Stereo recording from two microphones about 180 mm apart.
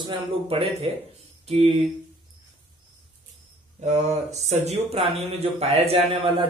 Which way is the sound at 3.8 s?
40° right (ahead or behind).